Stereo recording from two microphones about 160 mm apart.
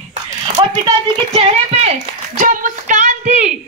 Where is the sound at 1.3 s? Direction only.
40° right (ahead or behind).